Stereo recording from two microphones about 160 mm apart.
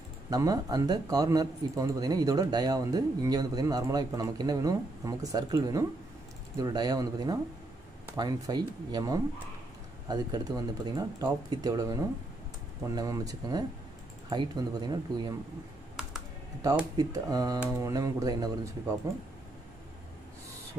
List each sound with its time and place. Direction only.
0.3 s speech: 25° right (ahead or behind)
16.9 s speech: 25° right (ahead or behind)